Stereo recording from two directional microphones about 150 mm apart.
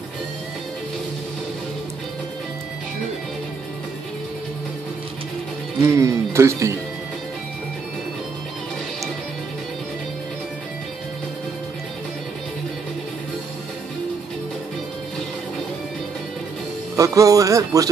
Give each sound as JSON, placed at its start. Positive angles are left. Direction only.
{"t": 5.8, "sound": "speech", "side_deg": -20}
{"t": 16.9, "sound": "speech", "side_deg": -20}